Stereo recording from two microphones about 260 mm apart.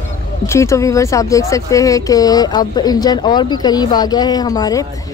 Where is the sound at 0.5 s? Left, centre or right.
Centre.